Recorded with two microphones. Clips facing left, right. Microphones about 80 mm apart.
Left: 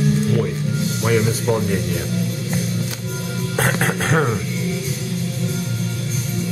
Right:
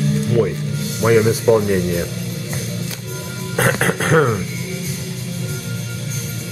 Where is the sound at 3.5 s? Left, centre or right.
Centre.